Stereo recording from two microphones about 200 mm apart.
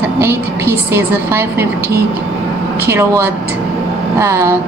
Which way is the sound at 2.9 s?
10° right (ahead or behind).